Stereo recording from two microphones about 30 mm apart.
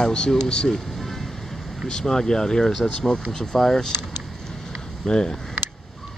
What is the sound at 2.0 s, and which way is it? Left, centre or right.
Speech, centre.